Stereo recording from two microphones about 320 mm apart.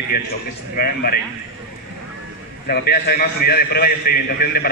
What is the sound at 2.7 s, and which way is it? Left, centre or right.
A man's voice, left.